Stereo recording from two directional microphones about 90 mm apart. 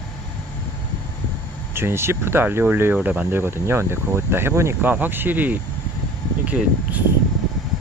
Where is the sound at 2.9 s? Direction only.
15° right (ahead or behind); by 4.8 s 30° right (ahead or behind).